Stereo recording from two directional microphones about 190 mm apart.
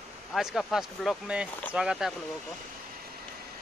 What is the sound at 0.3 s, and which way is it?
Speech, centre (ahead or behind).